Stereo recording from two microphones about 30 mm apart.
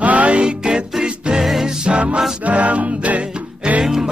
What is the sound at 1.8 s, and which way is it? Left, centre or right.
Music, right.